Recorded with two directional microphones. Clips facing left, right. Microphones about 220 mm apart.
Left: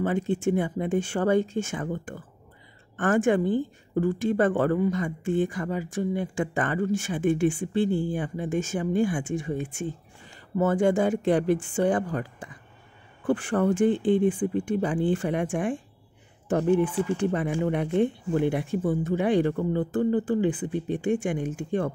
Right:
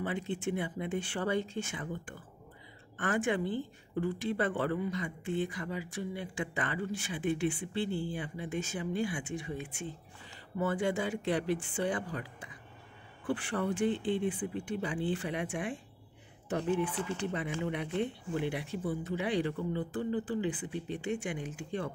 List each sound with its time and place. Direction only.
0.0 s a woman's voice: 45° left (ahead or behind)
16.9 s speech: 10° left (ahead or behind)
17.2 s a woman's voice: 50° left (ahead or behind)